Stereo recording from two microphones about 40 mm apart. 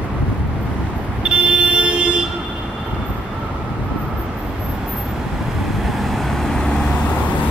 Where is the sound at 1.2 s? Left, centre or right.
Right.